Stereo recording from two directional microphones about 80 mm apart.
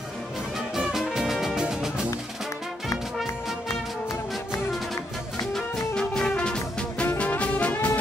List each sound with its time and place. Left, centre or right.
0.7 s music: centre
5.5 s music: centre